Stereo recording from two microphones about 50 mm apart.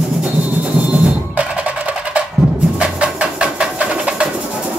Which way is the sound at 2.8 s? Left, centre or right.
Right.